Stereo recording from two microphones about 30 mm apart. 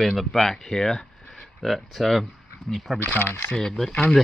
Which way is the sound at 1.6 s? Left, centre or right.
Centre.